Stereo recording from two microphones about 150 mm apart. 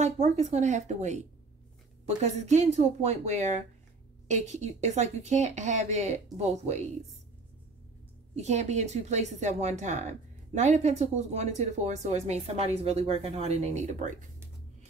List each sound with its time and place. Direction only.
0.0 s speech: 45° right (ahead or behind)
8.4 s speech: 50° right (ahead or behind)